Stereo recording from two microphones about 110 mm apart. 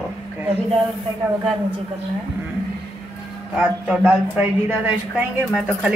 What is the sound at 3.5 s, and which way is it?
A woman's voice, 10° right (ahead or behind).